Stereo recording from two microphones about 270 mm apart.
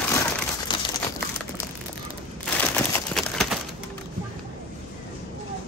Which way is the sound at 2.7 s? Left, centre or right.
Centre.